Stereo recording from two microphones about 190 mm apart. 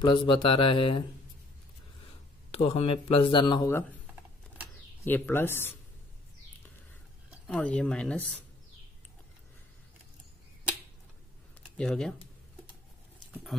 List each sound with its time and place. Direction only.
0.0 s speech: 25° left (ahead or behind)
5.0 s speech: 10° left (ahead or behind)
7.4 s speech: 5° left (ahead or behind)
11.7 s speech: 5° left (ahead or behind)
13.3 s horse: centre (ahead or behind)